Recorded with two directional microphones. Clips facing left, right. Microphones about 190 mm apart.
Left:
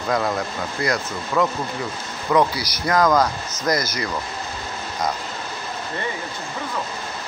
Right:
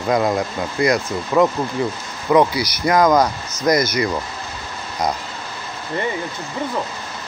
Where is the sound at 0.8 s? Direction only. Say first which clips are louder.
Right 6 dB; 25° right (ahead or behind).